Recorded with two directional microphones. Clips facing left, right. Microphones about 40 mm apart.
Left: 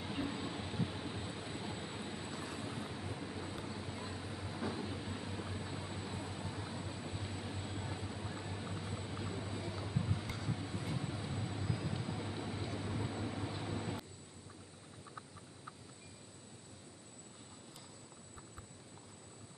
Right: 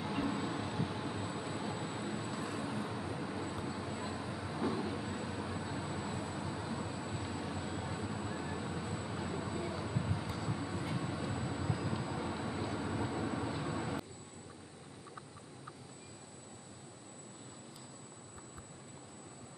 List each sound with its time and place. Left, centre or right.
0.0 s vehicle: centre